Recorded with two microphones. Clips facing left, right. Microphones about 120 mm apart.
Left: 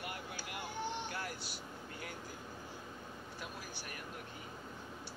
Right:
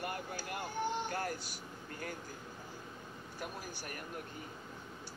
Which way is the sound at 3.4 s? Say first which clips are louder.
Right 5 dB; 45° right (ahead or behind).